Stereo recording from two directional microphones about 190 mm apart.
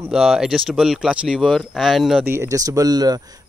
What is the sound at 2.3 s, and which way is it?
Speech, 15° right (ahead or behind).